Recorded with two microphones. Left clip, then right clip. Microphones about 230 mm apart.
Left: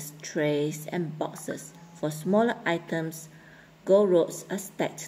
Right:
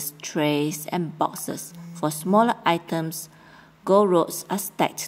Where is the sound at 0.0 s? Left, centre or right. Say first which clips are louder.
Right 4 dB; right.